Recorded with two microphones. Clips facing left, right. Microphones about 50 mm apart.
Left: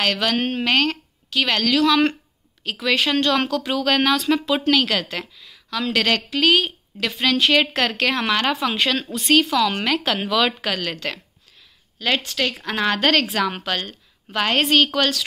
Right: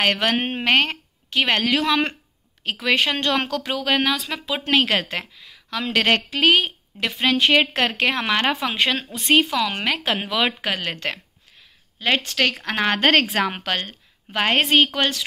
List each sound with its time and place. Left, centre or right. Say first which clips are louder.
0.0 s a woman's voice: right 1 dB; right
3.6 s speech: left 2 dB; centre
4.6 s a woman's voice: right 3 dB; right
12.3 s a woman's voice: right 2 dB; right